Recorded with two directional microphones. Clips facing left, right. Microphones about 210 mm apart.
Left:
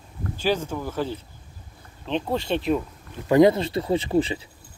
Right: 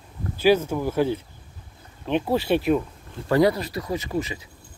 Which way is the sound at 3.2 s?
20° left (ahead or behind).